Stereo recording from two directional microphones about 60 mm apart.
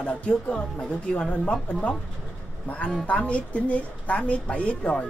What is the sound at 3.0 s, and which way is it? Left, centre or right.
Speech, left.